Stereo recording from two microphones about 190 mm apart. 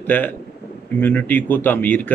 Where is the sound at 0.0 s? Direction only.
10° left (ahead or behind).